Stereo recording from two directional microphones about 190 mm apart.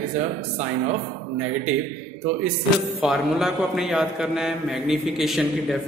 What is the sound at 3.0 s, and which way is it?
A man's voice, centre (ahead or behind).